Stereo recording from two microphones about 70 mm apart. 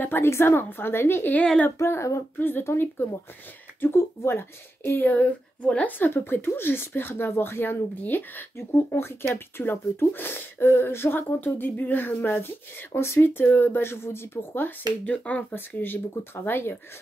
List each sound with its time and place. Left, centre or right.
0.0 s speech: left
1.8 s child singing: left
2.3 s speech: left
15.0 s speech: left
15.8 s speech: left